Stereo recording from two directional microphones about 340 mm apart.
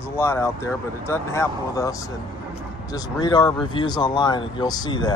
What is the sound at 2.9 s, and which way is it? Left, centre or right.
Speech, centre.